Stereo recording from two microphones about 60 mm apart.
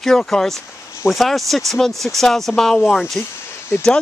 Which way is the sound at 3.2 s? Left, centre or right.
Left.